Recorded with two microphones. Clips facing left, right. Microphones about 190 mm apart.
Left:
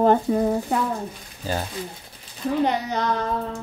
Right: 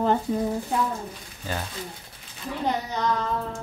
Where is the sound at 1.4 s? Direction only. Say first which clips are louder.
Left 5 dB; 30° left (ahead or behind).